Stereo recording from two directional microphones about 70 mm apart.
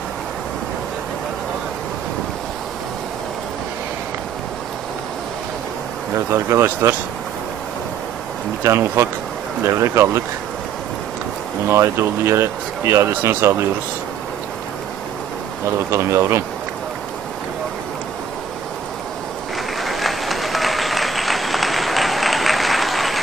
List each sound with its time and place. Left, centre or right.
6.1 s speech: right
8.6 s speech: right
11.7 s speech: right
15.9 s speech: right
19.8 s applause: centre